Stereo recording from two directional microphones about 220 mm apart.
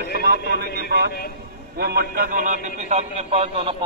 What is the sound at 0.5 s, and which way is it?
A man's voice, 45° right (ahead or behind).